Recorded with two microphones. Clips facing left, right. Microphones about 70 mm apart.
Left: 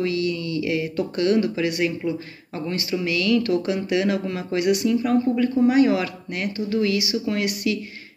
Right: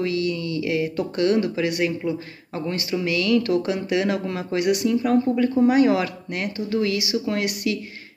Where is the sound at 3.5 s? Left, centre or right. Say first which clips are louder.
Even; right.